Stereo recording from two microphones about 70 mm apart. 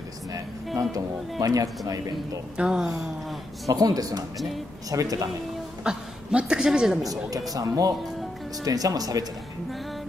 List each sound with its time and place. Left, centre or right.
1.4 s speech: right
2.5 s a woman's voice: centre
3.6 s speech: right
5.9 s a woman's voice: centre
7.0 s speech: right